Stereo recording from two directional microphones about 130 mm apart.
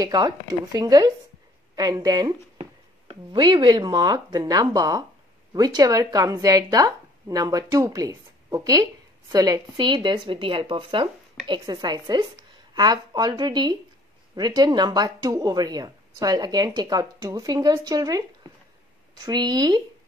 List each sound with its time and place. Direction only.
0.0 s speech: 30° right (ahead or behind)